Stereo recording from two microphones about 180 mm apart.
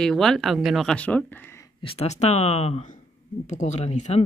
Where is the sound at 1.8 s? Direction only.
35° left (ahead or behind).